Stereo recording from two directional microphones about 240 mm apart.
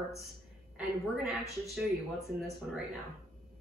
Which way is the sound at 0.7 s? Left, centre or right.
Centre.